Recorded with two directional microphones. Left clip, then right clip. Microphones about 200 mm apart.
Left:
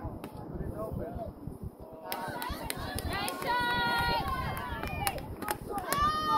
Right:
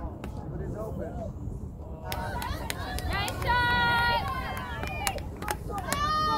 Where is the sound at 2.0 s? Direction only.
55° right (ahead or behind).